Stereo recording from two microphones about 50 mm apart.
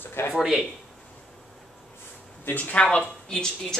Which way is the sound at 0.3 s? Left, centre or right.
Centre.